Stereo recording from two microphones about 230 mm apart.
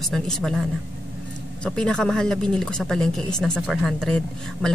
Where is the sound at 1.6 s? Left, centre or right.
Centre.